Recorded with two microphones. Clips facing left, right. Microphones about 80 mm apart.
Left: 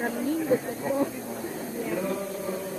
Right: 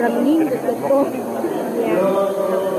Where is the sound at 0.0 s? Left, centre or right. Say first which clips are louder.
Right 13 dB; right.